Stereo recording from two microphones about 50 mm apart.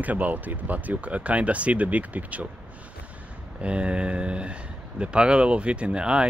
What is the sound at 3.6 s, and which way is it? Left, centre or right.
Speech, right.